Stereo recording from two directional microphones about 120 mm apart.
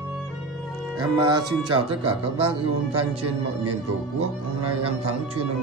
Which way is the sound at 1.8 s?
50° right (ahead or behind).